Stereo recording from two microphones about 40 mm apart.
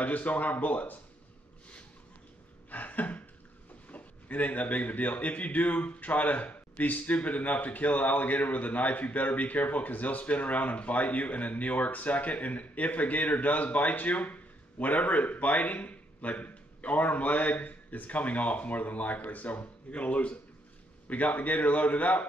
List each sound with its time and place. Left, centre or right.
0.0 s a man's voice: left
2.7 s a sound: left
3.9 s a man's voice: left